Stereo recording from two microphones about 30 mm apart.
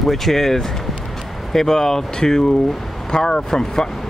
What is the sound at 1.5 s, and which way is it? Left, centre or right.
Speech, centre.